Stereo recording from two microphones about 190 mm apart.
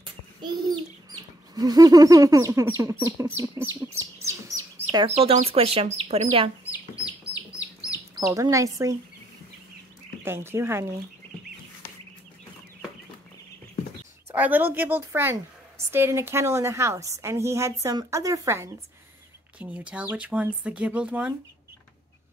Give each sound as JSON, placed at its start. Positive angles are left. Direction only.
{"t": 0.0, "sound": "speech", "side_deg": -25}
{"t": 4.3, "sound": "bird", "side_deg": -15}
{"t": 5.0, "sound": "speech", "side_deg": -30}
{"t": 6.6, "sound": "chicken", "side_deg": -10}
{"t": 10.2, "sound": "a woman's voice", "side_deg": -10}
{"t": 14.3, "sound": "a woman's voice", "side_deg": -10}